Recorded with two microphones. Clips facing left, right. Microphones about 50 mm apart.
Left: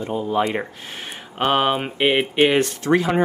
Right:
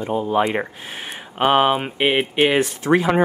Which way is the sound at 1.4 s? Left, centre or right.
Centre.